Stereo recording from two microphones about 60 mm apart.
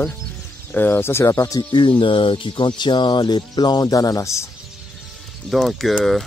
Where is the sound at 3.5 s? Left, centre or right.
Left.